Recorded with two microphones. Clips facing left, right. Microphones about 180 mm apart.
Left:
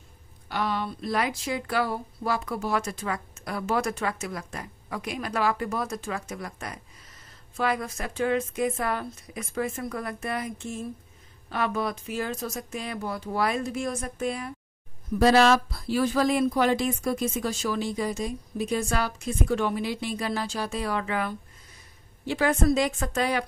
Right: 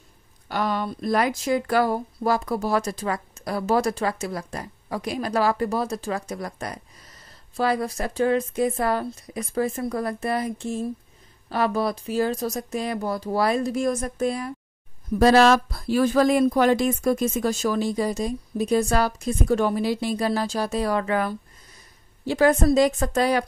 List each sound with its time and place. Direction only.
0.5 s a woman's voice: 45° right (ahead or behind)